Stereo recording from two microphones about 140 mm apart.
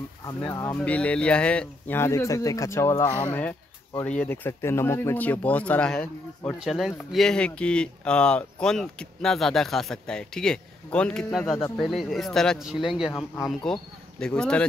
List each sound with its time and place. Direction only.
0.3 s speech: 20° left (ahead or behind)